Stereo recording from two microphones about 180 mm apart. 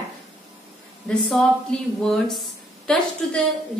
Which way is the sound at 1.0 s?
5° left (ahead or behind).